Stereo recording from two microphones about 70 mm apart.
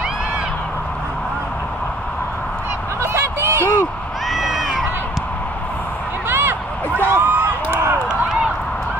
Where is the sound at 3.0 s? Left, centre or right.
Right.